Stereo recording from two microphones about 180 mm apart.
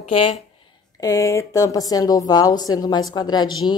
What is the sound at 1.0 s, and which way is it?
A woman's voice, 15° left (ahead or behind).